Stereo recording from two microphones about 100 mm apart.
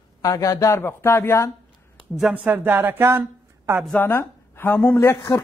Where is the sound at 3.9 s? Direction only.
20° left (ahead or behind).